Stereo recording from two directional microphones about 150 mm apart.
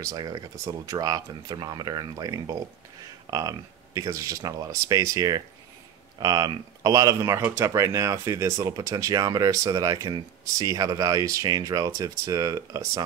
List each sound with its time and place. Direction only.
0.0 s speech: 25° right (ahead or behind)